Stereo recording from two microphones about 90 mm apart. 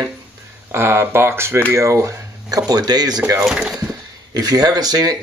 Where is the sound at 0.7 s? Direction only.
25° right (ahead or behind); by 3.2 s 50° right (ahead or behind).